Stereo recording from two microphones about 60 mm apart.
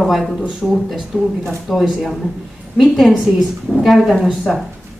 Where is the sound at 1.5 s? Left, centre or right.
Centre.